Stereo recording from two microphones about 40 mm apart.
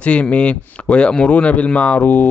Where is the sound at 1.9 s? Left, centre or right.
Left.